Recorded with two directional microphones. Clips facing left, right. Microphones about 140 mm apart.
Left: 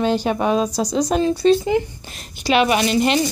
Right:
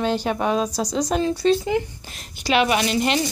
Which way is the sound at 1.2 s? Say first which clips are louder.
Left 4 dB; 25° left (ahead or behind).